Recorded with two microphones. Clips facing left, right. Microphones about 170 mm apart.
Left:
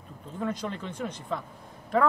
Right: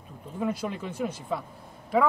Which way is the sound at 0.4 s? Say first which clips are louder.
Right 2 dB; 10° right (ahead or behind).